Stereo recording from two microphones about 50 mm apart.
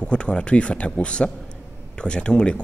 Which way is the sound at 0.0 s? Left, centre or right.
Centre.